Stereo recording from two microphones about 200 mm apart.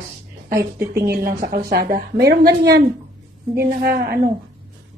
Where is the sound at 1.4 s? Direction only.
50° right (ahead or behind).